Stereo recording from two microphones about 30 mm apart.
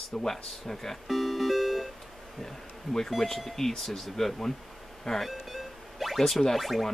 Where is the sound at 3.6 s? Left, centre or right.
Centre.